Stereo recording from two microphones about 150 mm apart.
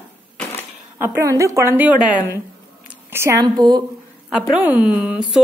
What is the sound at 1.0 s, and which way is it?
A woman's voice, 20° right (ahead or behind).